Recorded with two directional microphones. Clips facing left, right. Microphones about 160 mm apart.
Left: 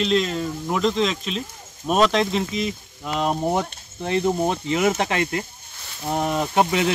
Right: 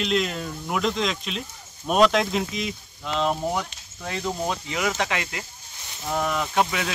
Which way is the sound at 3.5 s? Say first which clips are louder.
Left 5 dB; 30° left (ahead or behind).